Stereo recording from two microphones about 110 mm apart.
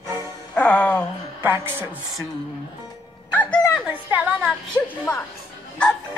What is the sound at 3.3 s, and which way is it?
Music, 15° left (ahead or behind).